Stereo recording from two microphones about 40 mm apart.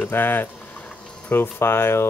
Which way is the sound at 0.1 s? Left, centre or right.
Left.